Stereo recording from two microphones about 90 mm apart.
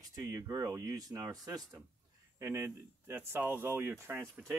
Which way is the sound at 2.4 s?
30° right (ahead or behind).